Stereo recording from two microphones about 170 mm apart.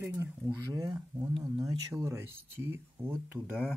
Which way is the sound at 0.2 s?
15° right (ahead or behind).